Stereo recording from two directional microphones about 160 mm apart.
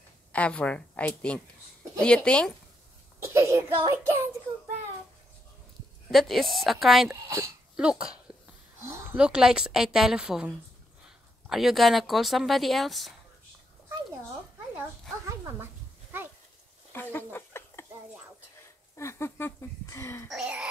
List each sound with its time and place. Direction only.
0.3 s a woman's voice: 5° left (ahead or behind)
3.3 s child singing: 15° right (ahead or behind)
6.0 s a woman's voice: centre (ahead or behind)
15.2 s a sound: 15° right (ahead or behind)
16.9 s a sound: 15° left (ahead or behind)
18.9 s speech: 15° left (ahead or behind)
20.2 s a woman's voice: 5° right (ahead or behind)